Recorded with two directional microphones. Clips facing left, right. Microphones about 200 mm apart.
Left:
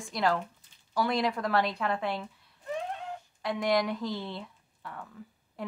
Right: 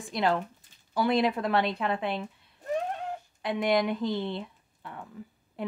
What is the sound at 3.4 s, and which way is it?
A woman's voice, 20° right (ahead or behind).